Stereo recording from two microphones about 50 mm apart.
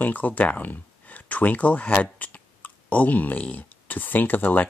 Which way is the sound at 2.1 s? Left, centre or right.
Left.